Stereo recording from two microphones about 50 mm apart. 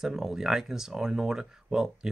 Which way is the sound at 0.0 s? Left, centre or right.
Centre.